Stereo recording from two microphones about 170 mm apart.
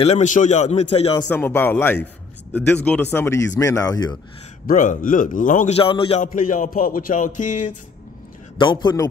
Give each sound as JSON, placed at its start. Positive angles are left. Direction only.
{"t": 0.0, "sound": "a man's voice", "side_deg": 40}
{"t": 1.3, "sound": "speech", "side_deg": 10}
{"t": 4.6, "sound": "music", "side_deg": 50}
{"t": 5.8, "sound": "a man's voice", "side_deg": 30}
{"t": 6.2, "sound": "music", "side_deg": 50}
{"t": 8.5, "sound": "a man's voice", "side_deg": 25}